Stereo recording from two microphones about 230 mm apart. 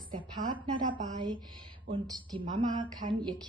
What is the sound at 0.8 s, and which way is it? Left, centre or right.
Speech, right.